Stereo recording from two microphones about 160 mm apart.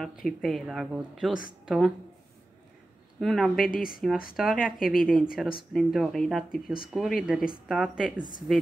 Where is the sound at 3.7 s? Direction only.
60° left (ahead or behind).